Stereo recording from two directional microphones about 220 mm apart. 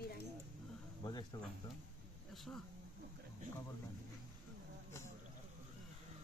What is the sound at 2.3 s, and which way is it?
Speech, centre (ahead or behind).